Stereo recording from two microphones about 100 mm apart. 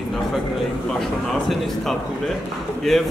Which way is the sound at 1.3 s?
Centre (ahead or behind).